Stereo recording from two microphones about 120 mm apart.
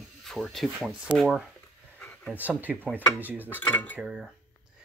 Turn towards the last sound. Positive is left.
turn(degrees=-5)  # may be behind; listen again after turning